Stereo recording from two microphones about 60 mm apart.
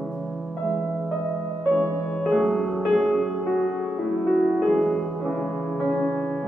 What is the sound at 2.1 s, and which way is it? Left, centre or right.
Music, centre.